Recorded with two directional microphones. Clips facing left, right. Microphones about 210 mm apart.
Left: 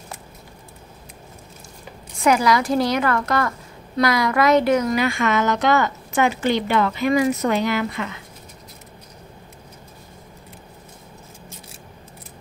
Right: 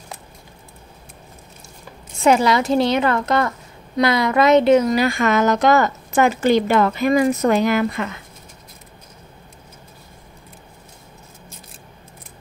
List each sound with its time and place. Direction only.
2.1 s a woman's voice: 25° right (ahead or behind); by 8.2 s 50° right (ahead or behind)